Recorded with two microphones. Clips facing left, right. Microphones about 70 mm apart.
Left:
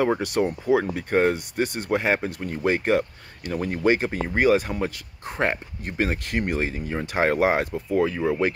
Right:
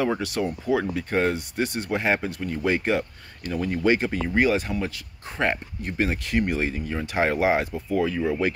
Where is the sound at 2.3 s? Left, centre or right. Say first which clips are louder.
Left 1 dB; left.